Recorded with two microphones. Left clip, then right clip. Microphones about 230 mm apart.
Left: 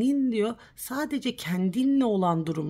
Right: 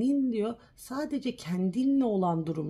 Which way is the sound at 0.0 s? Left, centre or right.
Left.